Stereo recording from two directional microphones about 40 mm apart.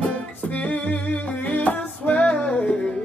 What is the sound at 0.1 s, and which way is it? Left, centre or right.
Music, left.